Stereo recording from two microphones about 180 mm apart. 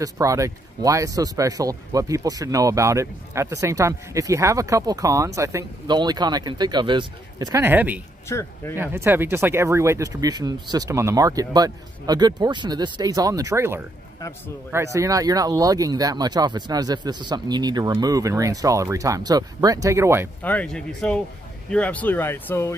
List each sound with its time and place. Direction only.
0.0 s speech: 15° right (ahead or behind)
8.3 s speech: 15° left (ahead or behind)
8.7 s speech: 10° right (ahead or behind)
20.4 s speech: 5° left (ahead or behind)